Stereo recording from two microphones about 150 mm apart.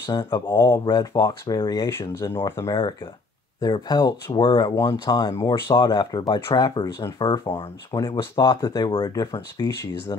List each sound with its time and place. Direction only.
0.0 s speech: 25° left (ahead or behind)